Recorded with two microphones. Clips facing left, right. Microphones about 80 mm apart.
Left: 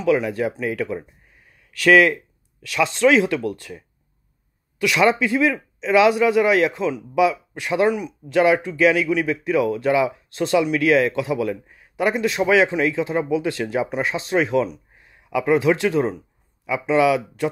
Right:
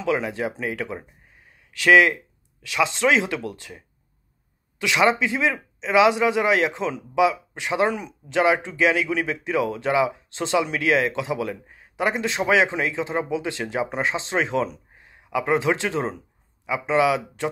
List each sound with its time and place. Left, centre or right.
0.0 s speech: right